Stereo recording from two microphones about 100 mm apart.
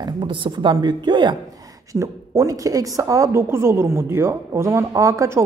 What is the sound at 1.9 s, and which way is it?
A woman's voice, 30° right (ahead or behind).